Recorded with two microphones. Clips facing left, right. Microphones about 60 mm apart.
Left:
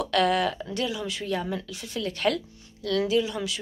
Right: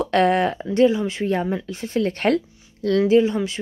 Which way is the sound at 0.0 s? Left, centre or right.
Right.